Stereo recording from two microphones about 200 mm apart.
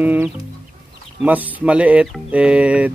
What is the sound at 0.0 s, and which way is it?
Speech, 10° right (ahead or behind).